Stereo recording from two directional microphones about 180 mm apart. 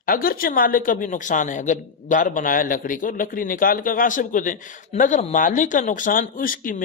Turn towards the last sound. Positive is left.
turn(degrees=50)  # may be behind; listen again after turning